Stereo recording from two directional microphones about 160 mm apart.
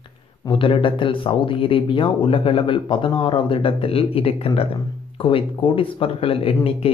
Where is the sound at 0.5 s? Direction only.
30° left (ahead or behind).